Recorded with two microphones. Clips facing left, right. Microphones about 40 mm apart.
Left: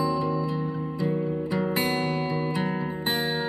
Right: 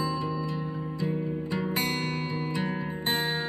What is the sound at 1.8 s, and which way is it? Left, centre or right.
Music, left.